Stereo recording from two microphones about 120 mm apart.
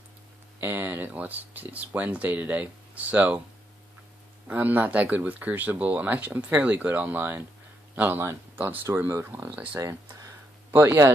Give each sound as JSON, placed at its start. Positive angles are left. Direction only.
{"t": 0.6, "sound": "speech", "side_deg": -15}
{"t": 4.5, "sound": "speech", "side_deg": -15}
{"t": 9.8, "sound": "speech", "side_deg": -25}